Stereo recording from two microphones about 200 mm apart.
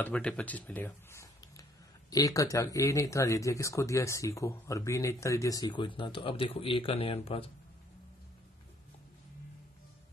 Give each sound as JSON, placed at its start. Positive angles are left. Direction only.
{"t": 0.0, "sound": "speech", "side_deg": 5}